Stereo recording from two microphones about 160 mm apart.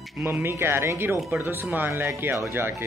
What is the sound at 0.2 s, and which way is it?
Speech, 15° right (ahead or behind).